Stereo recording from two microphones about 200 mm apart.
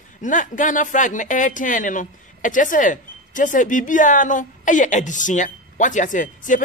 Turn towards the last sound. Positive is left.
turn(degrees=40)  # may be behind; listen again after turning